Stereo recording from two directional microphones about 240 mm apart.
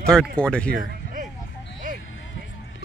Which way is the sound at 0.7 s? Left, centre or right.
Right.